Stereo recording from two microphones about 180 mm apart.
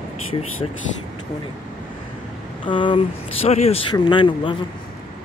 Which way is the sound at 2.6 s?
25° left (ahead or behind).